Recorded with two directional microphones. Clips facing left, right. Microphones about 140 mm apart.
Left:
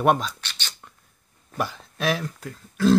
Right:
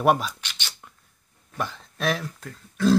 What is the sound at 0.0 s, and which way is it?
Speech, 5° right (ahead or behind).